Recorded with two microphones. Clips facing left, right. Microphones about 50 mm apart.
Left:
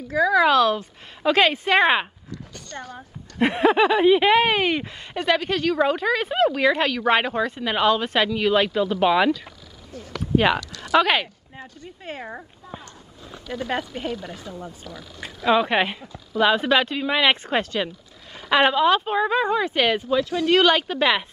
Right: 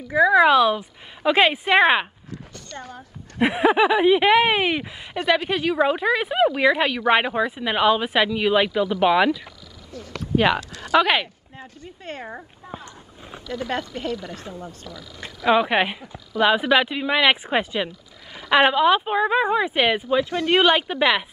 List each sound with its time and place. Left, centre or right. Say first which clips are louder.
0.1 s speech: right 3 dB; right
2.7 s speech: left 1 dB; left
3.3 s speech: even; centre
9.9 s speech: right 1 dB; left
10.3 s speech: even; centre
12.8 s a sound: right 1 dB; right
13.7 s speech: even; centre
15.4 s speech: right 1 dB; centre